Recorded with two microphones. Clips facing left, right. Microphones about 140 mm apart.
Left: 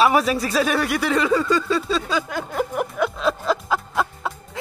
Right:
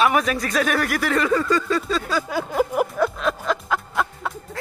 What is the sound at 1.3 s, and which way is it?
Music, 5° left (ahead or behind).